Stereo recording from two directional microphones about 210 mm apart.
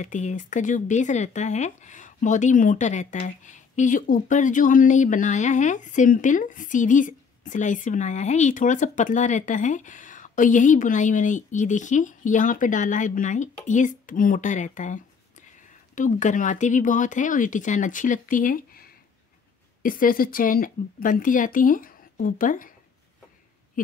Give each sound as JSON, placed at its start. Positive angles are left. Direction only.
{"t": 0.0, "sound": "speech", "side_deg": 35}